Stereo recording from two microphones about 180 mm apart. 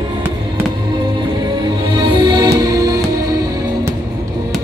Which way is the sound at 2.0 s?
30° right (ahead or behind).